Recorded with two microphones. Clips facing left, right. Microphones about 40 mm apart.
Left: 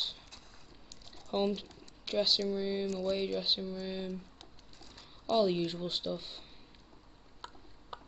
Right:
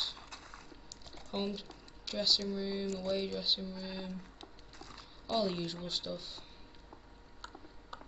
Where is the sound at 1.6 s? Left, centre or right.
Left.